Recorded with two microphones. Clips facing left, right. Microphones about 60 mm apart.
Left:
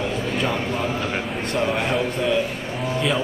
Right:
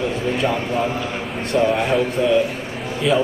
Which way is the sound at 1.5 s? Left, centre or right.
Centre.